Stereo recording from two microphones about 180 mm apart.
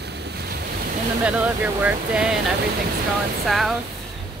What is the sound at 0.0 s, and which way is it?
Waves, 65° right (ahead or behind).